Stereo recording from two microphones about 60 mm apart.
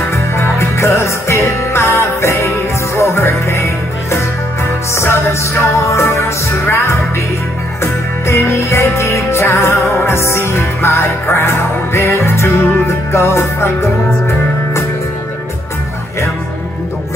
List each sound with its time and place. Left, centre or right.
0.1 s music: left